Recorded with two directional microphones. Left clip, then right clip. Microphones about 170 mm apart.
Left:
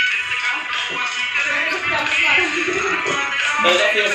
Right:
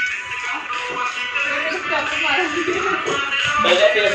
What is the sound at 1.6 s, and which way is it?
Music, 35° left (ahead or behind).